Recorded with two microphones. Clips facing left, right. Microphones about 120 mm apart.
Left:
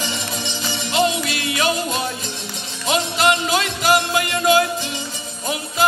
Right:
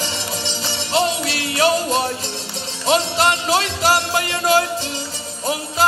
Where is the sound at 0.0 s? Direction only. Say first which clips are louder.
Right 1 dB; 35° right (ahead or behind).